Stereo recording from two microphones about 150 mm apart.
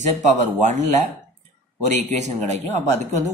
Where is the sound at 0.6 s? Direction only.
50° right (ahead or behind).